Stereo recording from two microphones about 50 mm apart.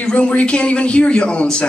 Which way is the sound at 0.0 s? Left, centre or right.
Left.